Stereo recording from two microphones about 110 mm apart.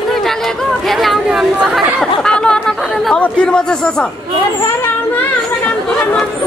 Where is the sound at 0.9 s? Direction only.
Centre (ahead or behind).